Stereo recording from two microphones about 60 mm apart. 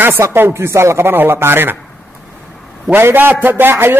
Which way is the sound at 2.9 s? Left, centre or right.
Right.